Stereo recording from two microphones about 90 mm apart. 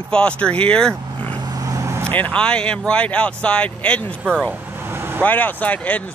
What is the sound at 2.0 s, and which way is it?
Speech, 15° left (ahead or behind).